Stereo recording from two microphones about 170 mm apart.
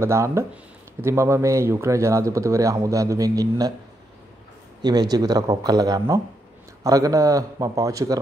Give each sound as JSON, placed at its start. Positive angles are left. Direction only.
{"t": 0.0, "sound": "speech", "side_deg": -15}
{"t": 4.8, "sound": "speech", "side_deg": -25}